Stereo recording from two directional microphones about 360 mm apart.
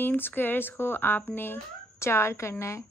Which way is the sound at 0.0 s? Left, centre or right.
Centre.